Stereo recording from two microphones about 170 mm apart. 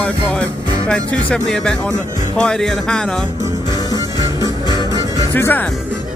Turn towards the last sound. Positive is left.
turn(degrees=10)  # may be behind; listen again after turning